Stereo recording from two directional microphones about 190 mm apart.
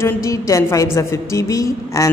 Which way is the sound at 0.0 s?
15° left (ahead or behind).